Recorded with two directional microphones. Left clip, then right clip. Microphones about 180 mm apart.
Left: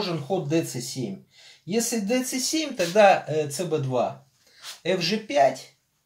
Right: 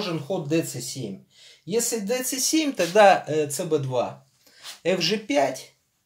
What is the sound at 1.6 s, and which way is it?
Speech, 45° right (ahead or behind).